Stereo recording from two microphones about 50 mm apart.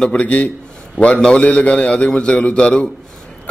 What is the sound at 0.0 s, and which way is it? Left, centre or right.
A man's voice, left.